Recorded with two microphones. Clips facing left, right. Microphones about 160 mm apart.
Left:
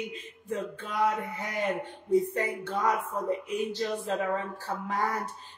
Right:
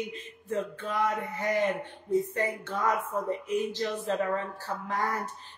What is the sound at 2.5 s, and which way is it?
Speech, 10° left (ahead or behind).